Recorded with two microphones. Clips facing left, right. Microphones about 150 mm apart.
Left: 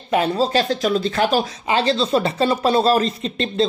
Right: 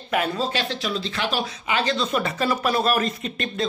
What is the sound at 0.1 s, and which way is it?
Speech, 30° left (ahead or behind).